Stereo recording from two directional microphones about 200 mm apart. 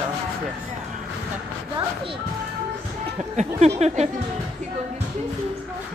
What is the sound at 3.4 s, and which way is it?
Speech, 35° right (ahead or behind).